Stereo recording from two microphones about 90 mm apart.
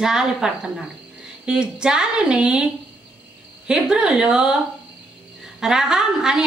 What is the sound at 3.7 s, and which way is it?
Speech, 10° right (ahead or behind).